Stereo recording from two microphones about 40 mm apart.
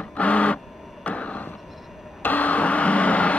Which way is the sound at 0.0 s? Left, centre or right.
Left.